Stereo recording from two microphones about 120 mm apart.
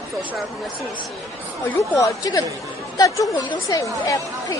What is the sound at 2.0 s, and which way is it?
A woman's voice, 30° left (ahead or behind).